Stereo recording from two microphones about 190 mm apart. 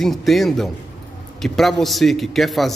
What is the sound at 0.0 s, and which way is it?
A man's voice, centre (ahead or behind).